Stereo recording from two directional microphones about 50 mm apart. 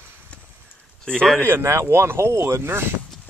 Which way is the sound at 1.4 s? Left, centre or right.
Right.